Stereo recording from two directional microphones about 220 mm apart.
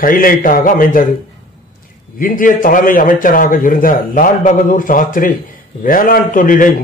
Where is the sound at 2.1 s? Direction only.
40° left (ahead or behind).